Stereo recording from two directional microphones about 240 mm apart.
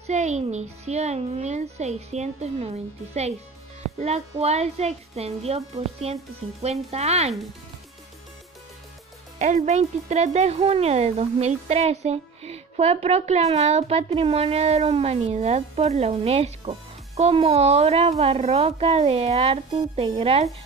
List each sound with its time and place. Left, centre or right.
0.0 s speech: right
4.0 s speech: right
6.6 s speech: right
9.4 s speech: right